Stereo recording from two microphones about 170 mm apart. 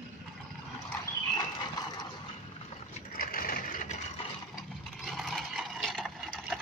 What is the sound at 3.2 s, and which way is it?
Vehicle, 60° left (ahead or behind).